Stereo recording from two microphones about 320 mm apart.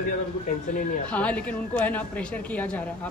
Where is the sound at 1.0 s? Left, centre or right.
Centre.